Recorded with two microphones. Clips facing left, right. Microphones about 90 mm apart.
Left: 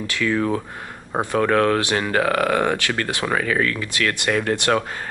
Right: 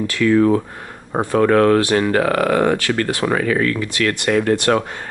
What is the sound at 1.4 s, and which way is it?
Speech, 45° right (ahead or behind).